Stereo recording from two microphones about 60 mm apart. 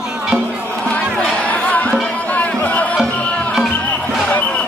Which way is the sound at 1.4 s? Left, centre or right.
Left.